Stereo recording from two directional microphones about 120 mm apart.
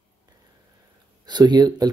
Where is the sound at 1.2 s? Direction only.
35° right (ahead or behind).